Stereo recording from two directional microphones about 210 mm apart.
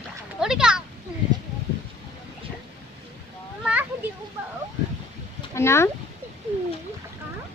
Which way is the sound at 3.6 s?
5° right (ahead or behind).